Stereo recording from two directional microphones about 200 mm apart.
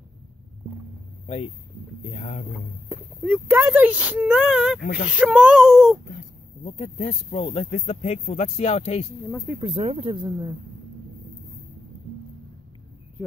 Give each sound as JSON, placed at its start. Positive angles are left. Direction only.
{"t": 1.2, "sound": "speech", "side_deg": 35}
{"t": 2.9, "sound": "speech", "side_deg": -10}
{"t": 6.6, "sound": "speech", "side_deg": 35}
{"t": 9.6, "sound": "speech", "side_deg": -25}